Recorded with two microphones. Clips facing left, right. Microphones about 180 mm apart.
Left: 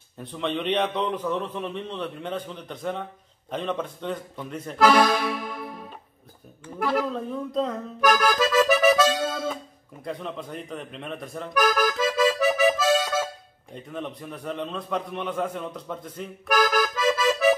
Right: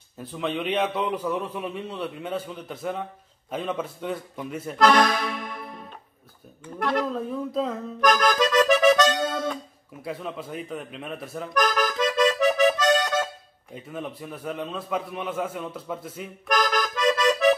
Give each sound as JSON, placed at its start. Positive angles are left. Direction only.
{"t": 0.2, "sound": "a man's voice", "side_deg": -5}
{"t": 4.7, "sound": "accordion", "side_deg": 5}
{"t": 6.6, "sound": "a man's voice", "side_deg": 5}
{"t": 8.0, "sound": "accordion", "side_deg": 5}
{"t": 10.0, "sound": "a man's voice", "side_deg": -5}
{"t": 11.5, "sound": "accordion", "side_deg": 5}
{"t": 13.7, "sound": "a man's voice", "side_deg": -5}
{"t": 16.4, "sound": "accordion", "side_deg": 5}